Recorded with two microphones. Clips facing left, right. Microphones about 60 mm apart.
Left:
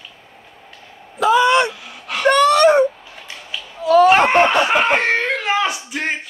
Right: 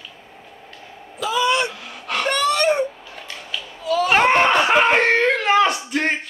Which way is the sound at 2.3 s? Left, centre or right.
Left.